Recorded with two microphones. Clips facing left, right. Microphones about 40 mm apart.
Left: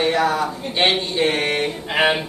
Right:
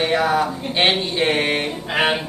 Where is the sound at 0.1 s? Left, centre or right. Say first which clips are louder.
Right 1 dB; centre.